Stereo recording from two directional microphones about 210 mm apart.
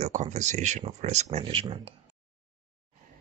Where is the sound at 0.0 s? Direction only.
35° right (ahead or behind).